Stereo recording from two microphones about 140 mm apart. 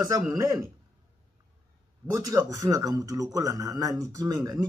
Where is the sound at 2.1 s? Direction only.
25° right (ahead or behind).